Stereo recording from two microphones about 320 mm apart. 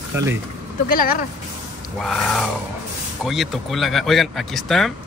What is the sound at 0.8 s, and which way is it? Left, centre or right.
Speech, left.